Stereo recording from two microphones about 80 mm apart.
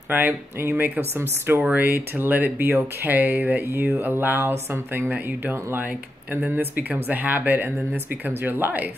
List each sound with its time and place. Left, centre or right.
0.1 s speech: right